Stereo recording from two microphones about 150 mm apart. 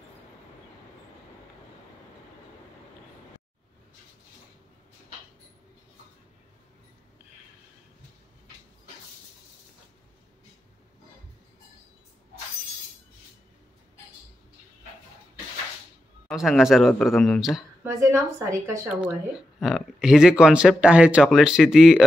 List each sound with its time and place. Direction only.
16.3 s speech: centre (ahead or behind)
17.8 s a woman's voice: 20° right (ahead or behind)
19.6 s speech: 5° right (ahead or behind)